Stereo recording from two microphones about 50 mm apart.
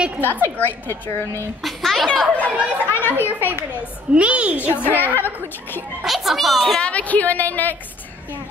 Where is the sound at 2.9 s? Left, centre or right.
Left.